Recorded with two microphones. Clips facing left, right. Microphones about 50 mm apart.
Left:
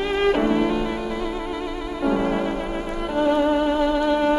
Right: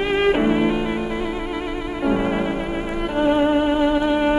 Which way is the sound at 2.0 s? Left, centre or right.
Right.